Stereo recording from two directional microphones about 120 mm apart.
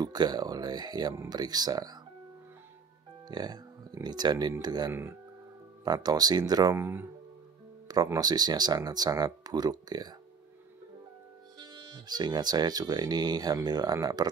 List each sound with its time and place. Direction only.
0.0 s speech: 35° right (ahead or behind)
3.3 s speech: 35° right (ahead or behind)
6.8 s speech: 20° right (ahead or behind)
8.1 s speech: 35° right (ahead or behind)
11.5 s speech: 35° right (ahead or behind)